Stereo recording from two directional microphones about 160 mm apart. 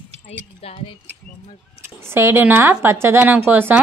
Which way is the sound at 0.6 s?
35° left (ahead or behind).